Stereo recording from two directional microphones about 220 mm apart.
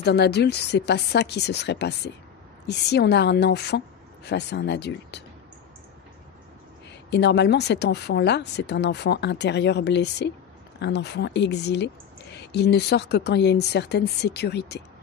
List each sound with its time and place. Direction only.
0.0 s speech: 50° left (ahead or behind)
7.1 s speech: 50° left (ahead or behind)